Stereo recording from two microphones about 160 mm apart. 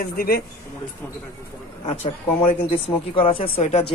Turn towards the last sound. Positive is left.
turn(degrees=40)  # may be behind; listen again after turning